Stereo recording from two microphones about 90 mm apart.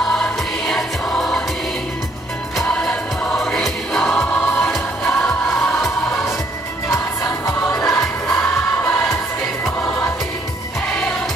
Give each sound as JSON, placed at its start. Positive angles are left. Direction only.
{"t": 0.0, "sound": "music", "side_deg": 5}
{"t": 2.7, "sound": "music", "side_deg": 10}
{"t": 7.6, "sound": "music", "side_deg": 10}
{"t": 8.9, "sound": "choir", "side_deg": 5}